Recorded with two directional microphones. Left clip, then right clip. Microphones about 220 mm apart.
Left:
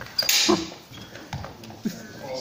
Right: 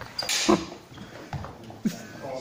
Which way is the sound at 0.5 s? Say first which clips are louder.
Even; 40° right (ahead or behind).